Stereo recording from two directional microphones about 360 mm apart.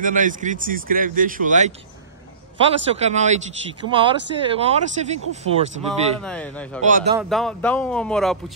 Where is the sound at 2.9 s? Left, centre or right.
Centre.